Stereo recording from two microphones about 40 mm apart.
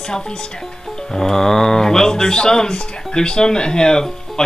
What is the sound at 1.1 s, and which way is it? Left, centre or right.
Speech, centre.